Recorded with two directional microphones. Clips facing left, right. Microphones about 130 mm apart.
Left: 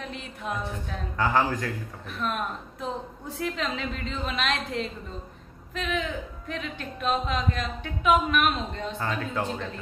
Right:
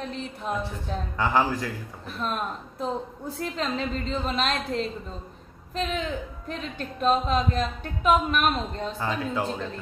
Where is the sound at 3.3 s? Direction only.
40° right (ahead or behind).